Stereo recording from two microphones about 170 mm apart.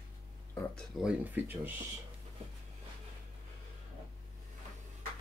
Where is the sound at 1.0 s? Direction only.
10° right (ahead or behind).